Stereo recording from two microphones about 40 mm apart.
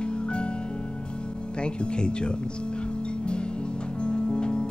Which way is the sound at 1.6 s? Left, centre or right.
Left.